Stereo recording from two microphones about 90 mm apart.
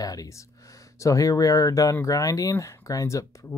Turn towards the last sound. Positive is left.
turn(degrees=40)  # may be behind; listen again after turning